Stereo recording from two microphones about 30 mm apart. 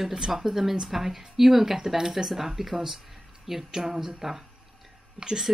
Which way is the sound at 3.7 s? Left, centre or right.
Centre.